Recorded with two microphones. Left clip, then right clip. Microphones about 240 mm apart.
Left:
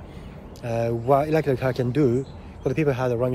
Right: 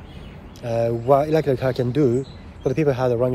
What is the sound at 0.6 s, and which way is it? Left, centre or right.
Speech, centre.